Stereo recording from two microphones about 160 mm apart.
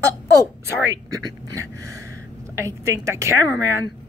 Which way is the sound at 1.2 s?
20° right (ahead or behind).